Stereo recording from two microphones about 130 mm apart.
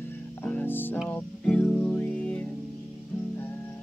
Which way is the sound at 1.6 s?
Centre (ahead or behind).